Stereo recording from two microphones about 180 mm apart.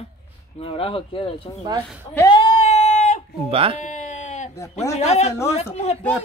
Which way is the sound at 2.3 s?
35° left (ahead or behind).